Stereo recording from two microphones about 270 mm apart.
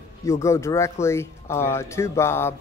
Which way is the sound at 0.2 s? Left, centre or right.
Centre.